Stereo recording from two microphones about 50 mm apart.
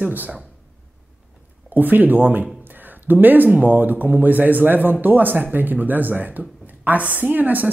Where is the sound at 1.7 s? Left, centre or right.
Right.